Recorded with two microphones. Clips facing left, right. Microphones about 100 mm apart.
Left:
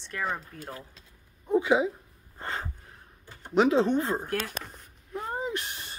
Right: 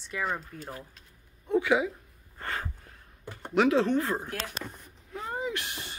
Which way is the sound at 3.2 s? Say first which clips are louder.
Right 7 dB; 80° right.